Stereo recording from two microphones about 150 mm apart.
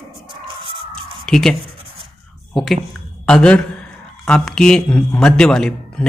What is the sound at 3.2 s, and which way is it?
Speech, 5° left (ahead or behind).